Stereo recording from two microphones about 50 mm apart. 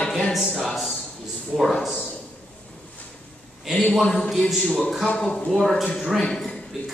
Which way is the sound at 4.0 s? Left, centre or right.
Centre.